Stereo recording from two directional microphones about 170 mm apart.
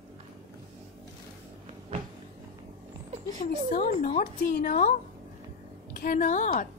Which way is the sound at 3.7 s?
45° left (ahead or behind).